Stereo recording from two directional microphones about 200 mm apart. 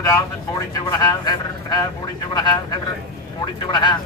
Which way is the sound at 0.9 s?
20° left (ahead or behind).